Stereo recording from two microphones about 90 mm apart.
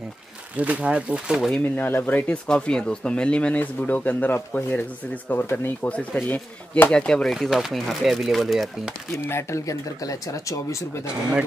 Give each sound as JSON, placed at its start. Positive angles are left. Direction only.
{"t": 0.6, "sound": "speech", "side_deg": -15}
{"t": 1.8, "sound": "speech", "side_deg": 20}
{"t": 7.3, "sound": "speech", "side_deg": 0}
{"t": 9.2, "sound": "speech", "side_deg": 30}